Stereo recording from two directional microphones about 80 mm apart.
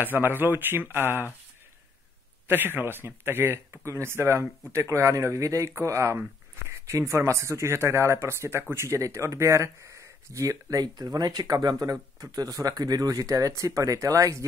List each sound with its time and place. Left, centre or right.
0.0 s speech: right
2.4 s speech: right